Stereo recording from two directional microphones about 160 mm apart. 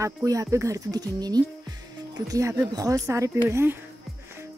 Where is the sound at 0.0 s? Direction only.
20° right (ahead or behind).